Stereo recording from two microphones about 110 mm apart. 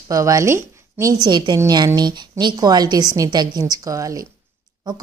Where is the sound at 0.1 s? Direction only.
30° right (ahead or behind).